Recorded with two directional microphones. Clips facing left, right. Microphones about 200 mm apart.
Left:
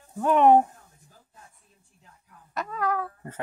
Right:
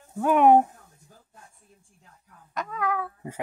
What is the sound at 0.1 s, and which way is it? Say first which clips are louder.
Speech: even; 5° right (ahead or behind).